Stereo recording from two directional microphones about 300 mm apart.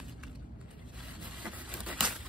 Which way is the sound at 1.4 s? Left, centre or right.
Centre.